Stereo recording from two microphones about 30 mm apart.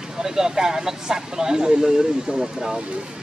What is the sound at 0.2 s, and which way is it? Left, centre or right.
Speech, centre.